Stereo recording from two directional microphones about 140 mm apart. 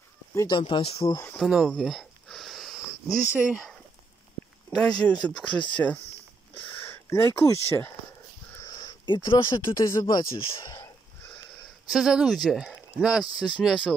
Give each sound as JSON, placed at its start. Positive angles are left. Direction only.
{"t": 0.5, "sound": "speech", "side_deg": 35}
{"t": 1.4, "sound": "speech", "side_deg": -5}
{"t": 1.7, "sound": "a sound", "side_deg": 0}
{"t": 4.6, "sound": "speech", "side_deg": 5}
{"t": 8.5, "sound": "a sound", "side_deg": 25}
{"t": 9.8, "sound": "speech", "side_deg": 30}
{"t": 11.9, "sound": "speech", "side_deg": -5}